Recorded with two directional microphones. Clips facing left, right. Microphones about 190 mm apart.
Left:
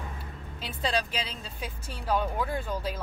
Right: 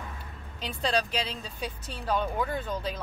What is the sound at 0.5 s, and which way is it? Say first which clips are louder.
Speech: right 2 dB; 5° left (ahead or behind).